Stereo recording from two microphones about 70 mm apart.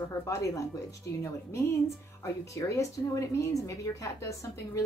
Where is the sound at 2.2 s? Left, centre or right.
Left.